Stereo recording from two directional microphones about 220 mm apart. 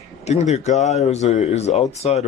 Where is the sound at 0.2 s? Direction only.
30° left (ahead or behind).